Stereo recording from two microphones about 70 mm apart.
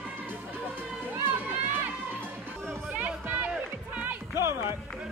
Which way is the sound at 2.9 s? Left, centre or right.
Right.